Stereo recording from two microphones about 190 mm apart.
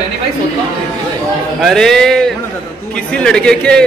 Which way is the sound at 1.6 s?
Centre (ahead or behind).